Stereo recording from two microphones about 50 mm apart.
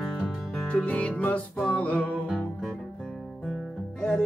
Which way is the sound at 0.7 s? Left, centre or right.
Left.